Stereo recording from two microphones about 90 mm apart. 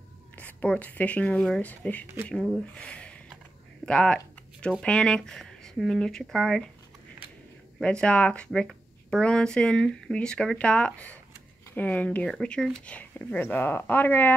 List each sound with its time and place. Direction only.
0.4 s speech: 20° left (ahead or behind)
2.3 s speech: 5° left (ahead or behind)
2.6 s a sound: 15° left (ahead or behind)
3.8 s speech: 10° left (ahead or behind)
7.8 s speech: 10° left (ahead or behind)